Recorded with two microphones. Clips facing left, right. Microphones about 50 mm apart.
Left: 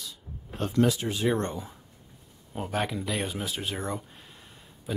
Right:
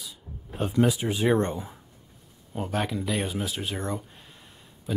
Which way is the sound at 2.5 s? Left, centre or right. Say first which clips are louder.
Right 1 dB; centre.